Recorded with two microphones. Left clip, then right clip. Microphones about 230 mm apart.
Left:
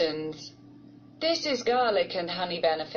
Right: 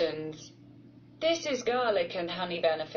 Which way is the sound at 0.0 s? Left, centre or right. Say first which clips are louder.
Left 3 dB; left.